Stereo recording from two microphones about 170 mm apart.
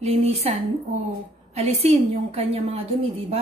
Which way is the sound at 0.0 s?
40° right (ahead or behind).